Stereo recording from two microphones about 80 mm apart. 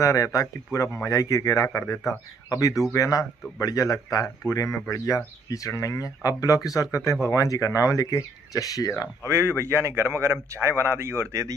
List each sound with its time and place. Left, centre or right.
0.0 s a man's voice: left
9.2 s a man's voice: right